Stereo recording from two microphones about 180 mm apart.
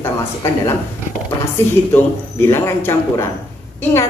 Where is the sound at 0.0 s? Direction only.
15° left (ahead or behind).